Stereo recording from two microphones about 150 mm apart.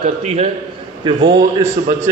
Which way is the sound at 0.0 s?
45° right (ahead or behind).